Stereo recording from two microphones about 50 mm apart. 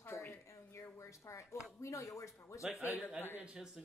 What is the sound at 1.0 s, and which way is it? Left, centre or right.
Speech, left.